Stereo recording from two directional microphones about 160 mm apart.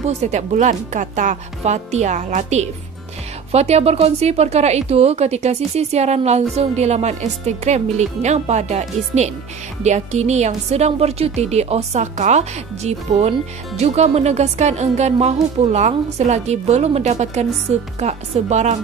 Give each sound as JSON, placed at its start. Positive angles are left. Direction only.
{"t": 0.0, "sound": "speech", "side_deg": -45}